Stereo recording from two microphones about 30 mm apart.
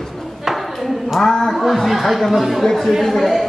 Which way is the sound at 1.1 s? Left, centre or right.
Centre.